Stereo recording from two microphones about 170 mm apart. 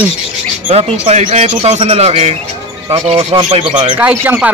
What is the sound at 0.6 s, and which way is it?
Speech, 40° right (ahead or behind).